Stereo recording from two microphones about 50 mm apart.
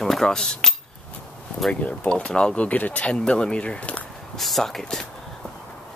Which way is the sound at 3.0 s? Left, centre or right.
Centre.